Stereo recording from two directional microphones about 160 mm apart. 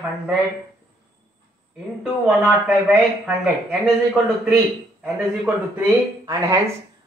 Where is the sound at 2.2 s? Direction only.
10° right (ahead or behind).